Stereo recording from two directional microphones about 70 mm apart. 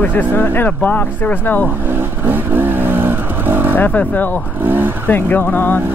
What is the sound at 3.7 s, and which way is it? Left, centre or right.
Speech, left.